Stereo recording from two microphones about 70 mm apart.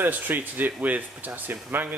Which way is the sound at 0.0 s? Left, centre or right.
Right.